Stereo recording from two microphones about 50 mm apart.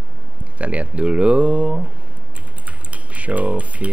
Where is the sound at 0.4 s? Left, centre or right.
Right.